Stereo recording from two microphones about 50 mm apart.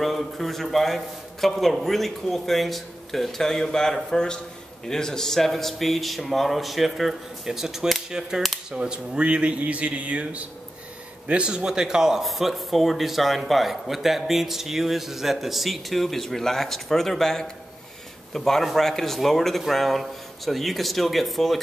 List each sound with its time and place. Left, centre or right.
0.0 s speech: centre